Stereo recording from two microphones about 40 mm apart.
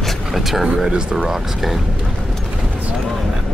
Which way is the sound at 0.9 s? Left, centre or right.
Right.